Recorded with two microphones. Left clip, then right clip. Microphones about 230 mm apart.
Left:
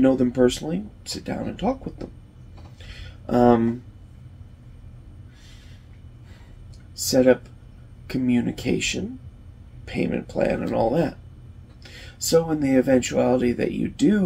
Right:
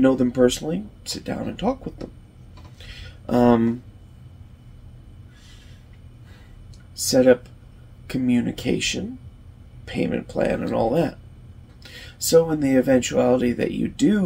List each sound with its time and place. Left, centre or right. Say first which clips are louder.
0.0 s speech: right 1 dB; centre
2.8 s a sound: right 2 dB; centre
7.0 s speech: right 2 dB; centre